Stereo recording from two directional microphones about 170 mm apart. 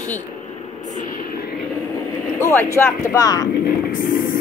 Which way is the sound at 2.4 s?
15° left (ahead or behind).